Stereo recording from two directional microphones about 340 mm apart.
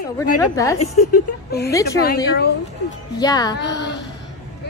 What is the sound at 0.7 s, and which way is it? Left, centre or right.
Speech, left.